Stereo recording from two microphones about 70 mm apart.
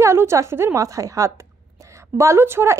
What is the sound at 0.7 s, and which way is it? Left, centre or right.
A woman's voice, right.